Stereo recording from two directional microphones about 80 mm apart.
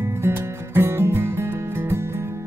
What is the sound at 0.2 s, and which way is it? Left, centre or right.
Music, right.